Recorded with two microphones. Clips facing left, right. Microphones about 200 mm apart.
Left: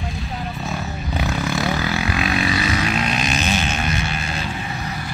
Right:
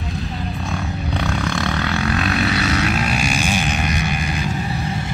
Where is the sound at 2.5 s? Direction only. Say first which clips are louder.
Right 2 dB; 70° right (ahead or behind).